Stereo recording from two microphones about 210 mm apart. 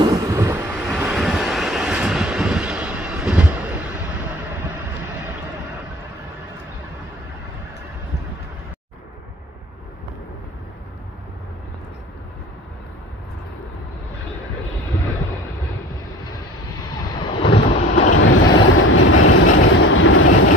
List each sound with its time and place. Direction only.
0.0 s vehicle: 15° right (ahead or behind)
17.1 s ocean: 25° left (ahead or behind)
18.1 s vehicle: 70° left (ahead or behind)